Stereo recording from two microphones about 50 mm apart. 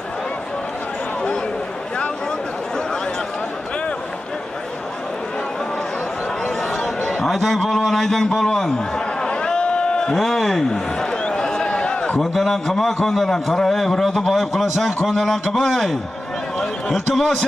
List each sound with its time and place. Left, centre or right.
6.8 s chatter: left
7.2 s a man's voice: centre
10.1 s a sound: centre
12.2 s a man's voice: centre